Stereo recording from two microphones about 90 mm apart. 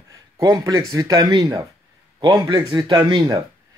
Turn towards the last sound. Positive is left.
turn(degrees=-55)  # may be behind; listen again after turning